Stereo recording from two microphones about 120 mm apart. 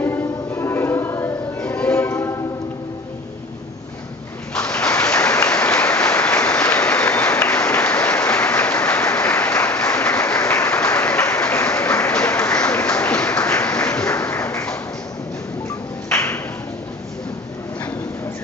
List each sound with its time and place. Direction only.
0.0 s music: 20° left (ahead or behind)
4.6 s applause: 10° left (ahead or behind)
5.9 s applause: 25° left (ahead or behind)
6.5 s applause: 10° left (ahead or behind)
11.7 s applause: 25° left (ahead or behind)
12.1 s applause: 10° left (ahead or behind)
14.0 s applause: 20° left (ahead or behind)